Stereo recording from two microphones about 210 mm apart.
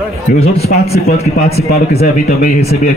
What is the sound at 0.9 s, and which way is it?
Speech, 30° left (ahead or behind).